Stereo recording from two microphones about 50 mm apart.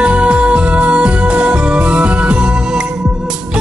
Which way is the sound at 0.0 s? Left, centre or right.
Right.